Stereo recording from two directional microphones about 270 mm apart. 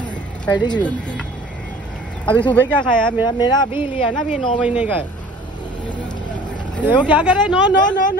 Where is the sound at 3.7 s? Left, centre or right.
Centre.